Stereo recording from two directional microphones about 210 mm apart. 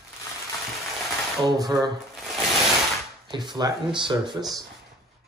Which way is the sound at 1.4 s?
20° right (ahead or behind).